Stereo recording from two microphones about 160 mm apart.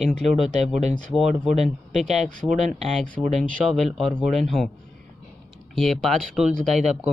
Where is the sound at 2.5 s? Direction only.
50° right (ahead or behind).